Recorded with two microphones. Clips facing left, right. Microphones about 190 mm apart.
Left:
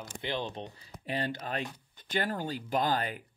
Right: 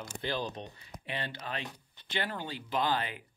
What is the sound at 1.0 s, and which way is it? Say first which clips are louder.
Speech: left 5 dB; 40° left (ahead or behind).